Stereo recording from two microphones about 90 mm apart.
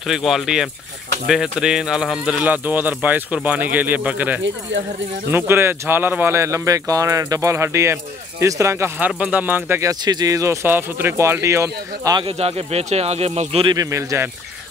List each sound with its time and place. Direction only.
0.0 s speech: 5° right (ahead or behind); by 9.1 s 30° right (ahead or behind)
9.2 s speech: 20° right (ahead or behind)
10.0 s speech: 45° right (ahead or behind)
12.2 s speech: 90° right
13.7 s speech: 35° right (ahead or behind)